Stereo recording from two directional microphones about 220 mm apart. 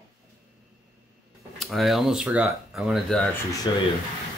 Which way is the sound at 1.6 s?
Centre (ahead or behind).